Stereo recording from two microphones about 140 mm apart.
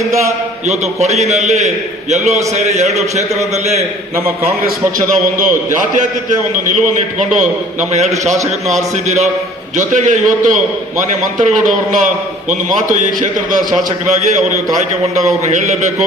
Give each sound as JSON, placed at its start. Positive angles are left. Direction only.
{"t": 0.7, "sound": "a man's voice", "side_deg": -50}
{"t": 5.1, "sound": "a man's voice", "side_deg": -65}
{"t": 14.8, "sound": "a man's voice", "side_deg": -60}